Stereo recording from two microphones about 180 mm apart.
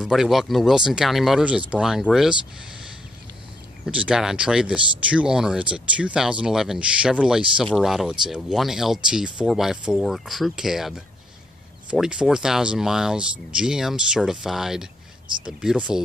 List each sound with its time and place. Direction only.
0.0 s speech: centre (ahead or behind)
3.8 s speech: 5° right (ahead or behind)
15.2 s speech: 25° right (ahead or behind)